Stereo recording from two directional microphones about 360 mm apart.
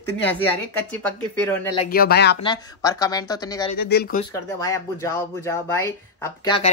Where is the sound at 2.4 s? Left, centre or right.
Centre.